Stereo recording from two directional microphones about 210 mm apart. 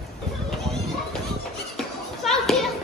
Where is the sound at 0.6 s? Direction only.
Centre (ahead or behind).